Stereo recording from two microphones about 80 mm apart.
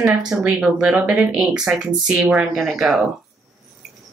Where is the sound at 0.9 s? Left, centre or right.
Centre.